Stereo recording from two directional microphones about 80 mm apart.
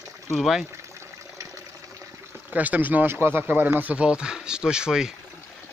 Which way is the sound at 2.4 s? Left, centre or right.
Right.